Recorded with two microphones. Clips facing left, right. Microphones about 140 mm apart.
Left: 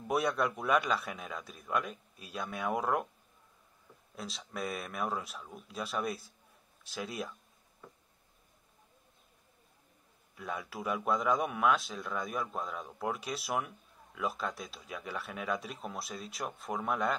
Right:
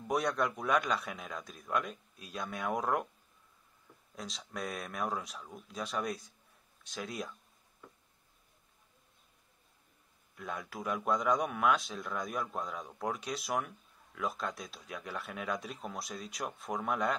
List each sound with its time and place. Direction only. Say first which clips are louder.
0.1 s a man's voice: left 1 dB; 5° left (ahead or behind)
4.1 s a man's voice: left 1 dB; centre (ahead or behind)
10.3 s a man's voice: left 1 dB; centre (ahead or behind)